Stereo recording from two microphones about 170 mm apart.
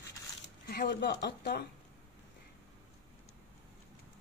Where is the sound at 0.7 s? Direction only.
70° left (ahead or behind).